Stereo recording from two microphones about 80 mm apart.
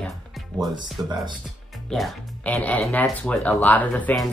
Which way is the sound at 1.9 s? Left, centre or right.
Centre.